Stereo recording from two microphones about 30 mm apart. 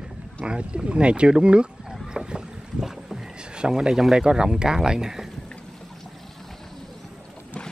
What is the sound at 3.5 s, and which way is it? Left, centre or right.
Speech, right.